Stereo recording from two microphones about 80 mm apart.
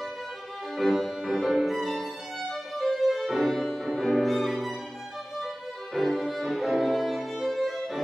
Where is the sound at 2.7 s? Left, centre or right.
Centre.